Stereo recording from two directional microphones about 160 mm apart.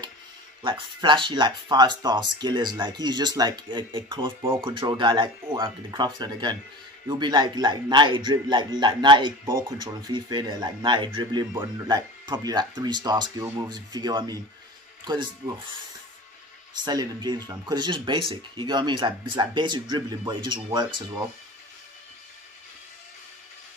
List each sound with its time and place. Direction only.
0.6 s speech: 30° right (ahead or behind)
16.8 s speech: 25° right (ahead or behind)